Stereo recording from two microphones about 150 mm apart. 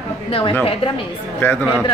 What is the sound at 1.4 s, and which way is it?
Speech, 10° left (ahead or behind).